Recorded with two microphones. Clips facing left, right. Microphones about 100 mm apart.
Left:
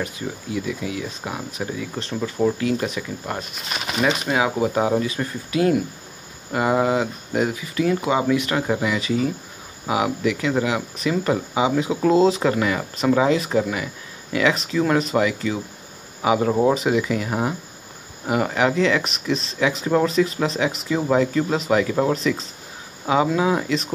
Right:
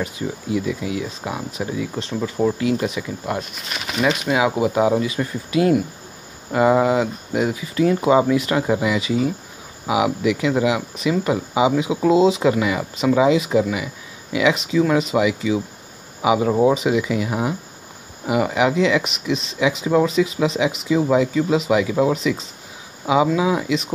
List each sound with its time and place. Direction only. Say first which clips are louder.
0.0 s speech: right 2 dB; 20° right (ahead or behind)
7.3 s speech: right 1 dB; 15° right (ahead or behind)
7.7 s speech: right 6 dB; 25° right (ahead or behind); by 23.9 s 10° right (ahead or behind)